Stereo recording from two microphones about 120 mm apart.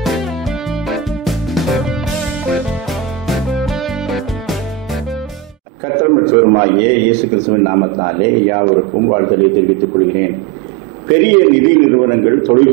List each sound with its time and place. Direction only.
0.0 s music: centre (ahead or behind)
5.9 s a man's voice: 20° right (ahead or behind)